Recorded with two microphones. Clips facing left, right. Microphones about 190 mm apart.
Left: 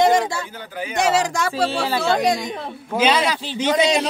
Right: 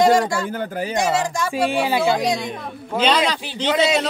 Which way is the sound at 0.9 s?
75° left (ahead or behind).